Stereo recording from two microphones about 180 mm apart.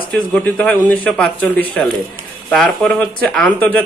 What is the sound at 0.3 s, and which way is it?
Speech, 5° left (ahead or behind).